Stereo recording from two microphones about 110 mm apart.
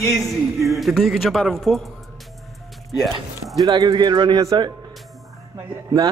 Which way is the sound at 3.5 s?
35° right (ahead or behind).